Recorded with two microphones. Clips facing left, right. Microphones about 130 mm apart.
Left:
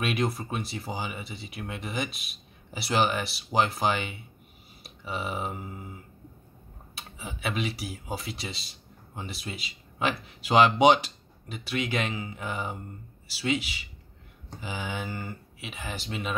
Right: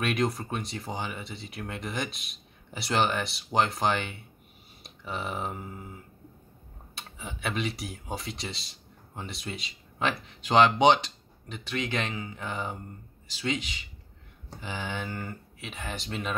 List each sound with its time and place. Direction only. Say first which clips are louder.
0.0 s speech: even; 5° left (ahead or behind)
4.8 s a sound: left 1 dB; 5° left (ahead or behind)
7.0 s speech: left 1 dB; 5° left (ahead or behind)